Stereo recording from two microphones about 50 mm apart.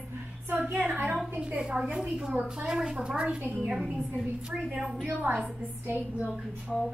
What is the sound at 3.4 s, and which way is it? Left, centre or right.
Speech, right.